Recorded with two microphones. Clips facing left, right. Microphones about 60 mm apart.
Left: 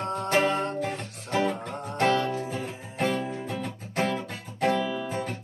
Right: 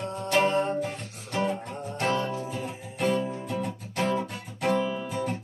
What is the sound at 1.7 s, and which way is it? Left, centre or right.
Music, left.